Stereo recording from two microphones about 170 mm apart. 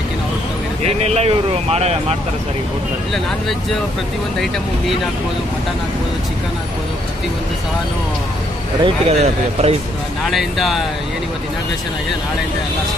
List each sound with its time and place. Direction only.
0.8 s speech: 35° right (ahead or behind)
8.8 s speech: 35° right (ahead or behind)
10.2 s speech: centre (ahead or behind)